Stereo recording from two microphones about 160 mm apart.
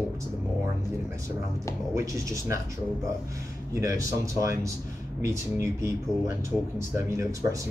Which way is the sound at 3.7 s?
20° right (ahead or behind).